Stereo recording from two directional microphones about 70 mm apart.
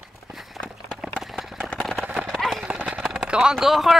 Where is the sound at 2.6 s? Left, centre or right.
Centre.